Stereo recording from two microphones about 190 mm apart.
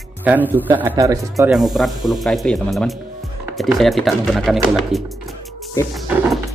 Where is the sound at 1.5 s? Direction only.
Centre (ahead or behind).